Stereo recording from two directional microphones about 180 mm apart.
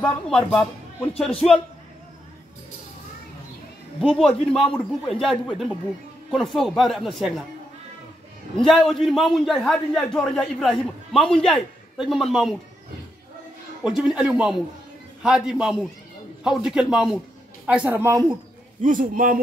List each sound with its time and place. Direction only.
0.0 s speech: 5° left (ahead or behind)
4.0 s a man's voice: 5° left (ahead or behind)
8.5 s a man's voice: centre (ahead or behind)
13.8 s a man's voice: 5° right (ahead or behind)
18.8 s a man's voice: 45° right (ahead or behind)